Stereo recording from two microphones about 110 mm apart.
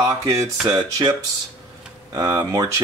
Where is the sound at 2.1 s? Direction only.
30° right (ahead or behind).